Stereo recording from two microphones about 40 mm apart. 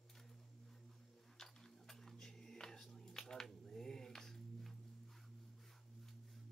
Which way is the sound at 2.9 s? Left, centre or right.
Centre.